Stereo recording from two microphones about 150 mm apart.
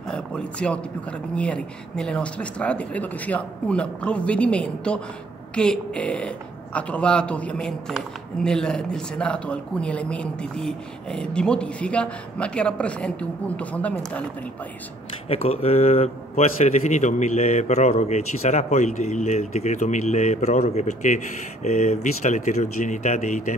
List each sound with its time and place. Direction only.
0.1 s speech: 5° left (ahead or behind)
15.2 s a man's voice: 40° left (ahead or behind)